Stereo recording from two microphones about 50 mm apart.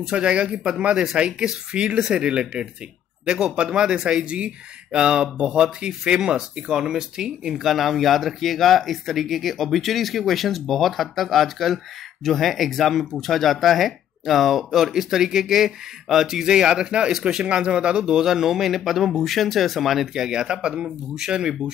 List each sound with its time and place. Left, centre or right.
0.0 s speech: right; by 20.2 s centre
20.2 s speech: centre